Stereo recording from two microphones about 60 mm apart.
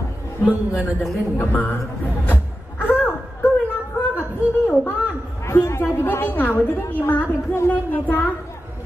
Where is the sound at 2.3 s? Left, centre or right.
Left.